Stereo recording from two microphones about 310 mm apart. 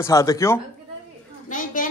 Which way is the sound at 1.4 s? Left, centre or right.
Left.